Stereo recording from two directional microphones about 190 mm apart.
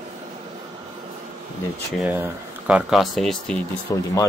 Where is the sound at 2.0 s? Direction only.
10° right (ahead or behind).